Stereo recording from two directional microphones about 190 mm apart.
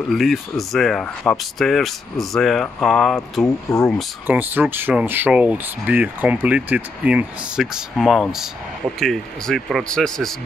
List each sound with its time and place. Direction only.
0.1 s speech: centre (ahead or behind)
3.4 s speech: 15° left (ahead or behind)
4.3 s speech: 10° right (ahead or behind)